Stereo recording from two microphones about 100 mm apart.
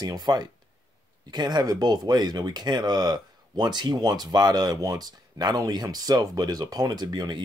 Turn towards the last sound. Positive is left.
turn(degrees=-45)  # may be behind; listen again after turning